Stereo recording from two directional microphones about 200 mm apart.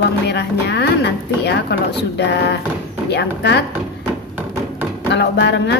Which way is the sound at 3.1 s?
55° left (ahead or behind).